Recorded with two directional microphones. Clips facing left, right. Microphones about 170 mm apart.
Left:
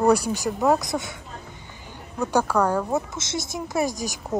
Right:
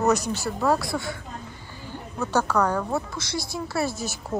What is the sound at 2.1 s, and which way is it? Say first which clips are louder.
Speech: left 2 dB; 15° left (ahead or behind).